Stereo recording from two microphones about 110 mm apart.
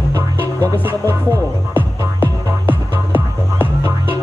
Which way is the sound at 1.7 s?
15° right (ahead or behind).